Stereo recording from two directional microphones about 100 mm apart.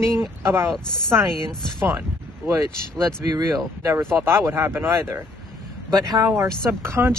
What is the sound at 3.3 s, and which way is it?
Speech, 40° right (ahead or behind).